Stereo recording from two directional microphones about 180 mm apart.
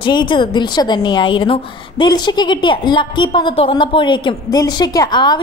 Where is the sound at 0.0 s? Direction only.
25° left (ahead or behind).